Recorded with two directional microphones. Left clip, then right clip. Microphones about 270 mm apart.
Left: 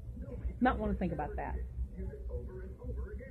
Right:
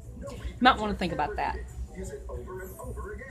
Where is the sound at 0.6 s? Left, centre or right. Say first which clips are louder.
Right 10 dB; centre.